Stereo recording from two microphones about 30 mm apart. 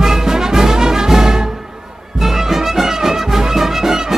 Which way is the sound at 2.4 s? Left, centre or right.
Centre.